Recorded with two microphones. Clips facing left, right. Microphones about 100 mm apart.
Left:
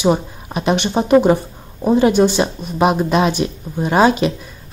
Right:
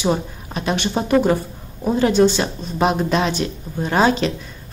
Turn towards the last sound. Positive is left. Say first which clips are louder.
# left 3 dB
turn(degrees=10)  # may be behind; listen again after turning